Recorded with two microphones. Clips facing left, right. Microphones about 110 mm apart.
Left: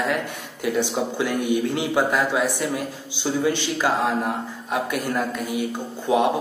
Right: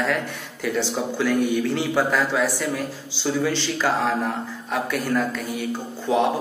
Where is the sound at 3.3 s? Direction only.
30° left (ahead or behind).